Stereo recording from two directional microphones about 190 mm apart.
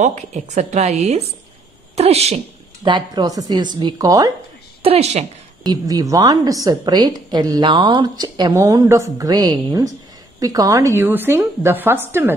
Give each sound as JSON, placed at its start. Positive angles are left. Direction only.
{"t": 0.0, "sound": "a woman's voice", "side_deg": -40}
{"t": 4.8, "sound": "a woman's voice", "side_deg": -35}
{"t": 5.6, "sound": "a woman's voice", "side_deg": -20}